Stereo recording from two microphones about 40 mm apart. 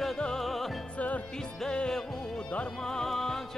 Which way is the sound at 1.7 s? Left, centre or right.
Centre.